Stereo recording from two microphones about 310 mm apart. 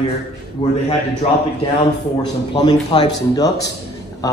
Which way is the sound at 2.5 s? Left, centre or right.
Centre.